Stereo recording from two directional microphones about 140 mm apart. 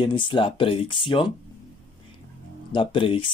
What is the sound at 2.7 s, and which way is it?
Speech, 40° left (ahead or behind).